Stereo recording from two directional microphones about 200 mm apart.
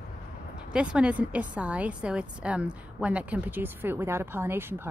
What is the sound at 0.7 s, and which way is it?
A woman's voice, 5° right (ahead or behind).